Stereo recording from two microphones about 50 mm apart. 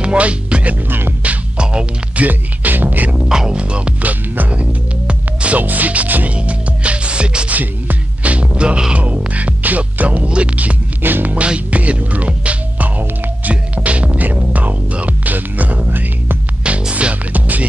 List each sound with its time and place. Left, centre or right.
0.0 s music: right
0.8 s music: right
1.2 s music: right
2.2 s music: right
3.3 s music: centre
3.5 s speech: right
6.3 s music: right
11.0 s music: right
11.3 s music: right
16.6 s music: right